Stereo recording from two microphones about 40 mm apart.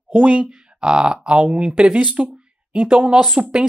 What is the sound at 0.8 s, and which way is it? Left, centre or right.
Speech, right.